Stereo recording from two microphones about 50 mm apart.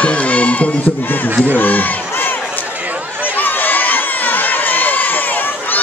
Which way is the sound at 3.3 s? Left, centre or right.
Left.